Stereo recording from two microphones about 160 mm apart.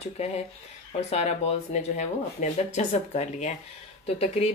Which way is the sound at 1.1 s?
45° left (ahead or behind).